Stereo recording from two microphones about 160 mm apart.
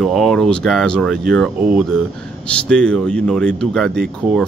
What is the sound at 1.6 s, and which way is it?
Speech, 10° right (ahead or behind).